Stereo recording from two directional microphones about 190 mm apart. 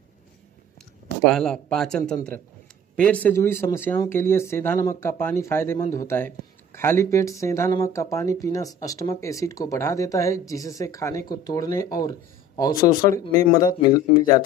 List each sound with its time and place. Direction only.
1.2 s speech: 5° left (ahead or behind); by 14.4 s 20° left (ahead or behind)